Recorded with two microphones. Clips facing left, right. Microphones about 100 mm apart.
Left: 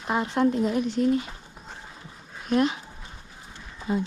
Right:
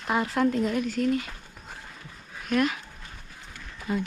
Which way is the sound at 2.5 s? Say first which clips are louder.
Left 2 dB; 30° left (ahead or behind).